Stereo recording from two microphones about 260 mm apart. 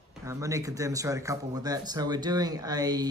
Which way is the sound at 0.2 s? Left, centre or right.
Centre.